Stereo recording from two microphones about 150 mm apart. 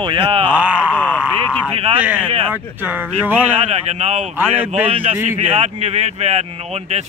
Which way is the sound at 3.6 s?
45° right (ahead or behind).